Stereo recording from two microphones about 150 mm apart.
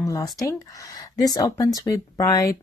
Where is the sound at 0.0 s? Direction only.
25° left (ahead or behind).